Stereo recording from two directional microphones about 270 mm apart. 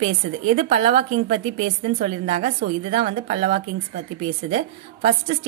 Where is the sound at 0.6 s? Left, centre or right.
Right.